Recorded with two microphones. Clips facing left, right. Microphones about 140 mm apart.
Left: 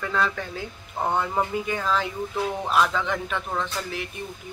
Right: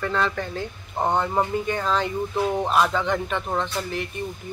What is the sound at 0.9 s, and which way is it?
Speech, 20° right (ahead or behind).